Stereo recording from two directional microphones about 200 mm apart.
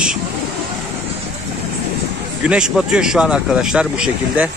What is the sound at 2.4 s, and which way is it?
Speech, 5° right (ahead or behind).